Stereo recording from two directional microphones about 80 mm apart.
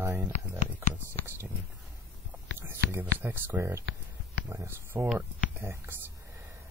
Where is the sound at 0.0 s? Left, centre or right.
Right.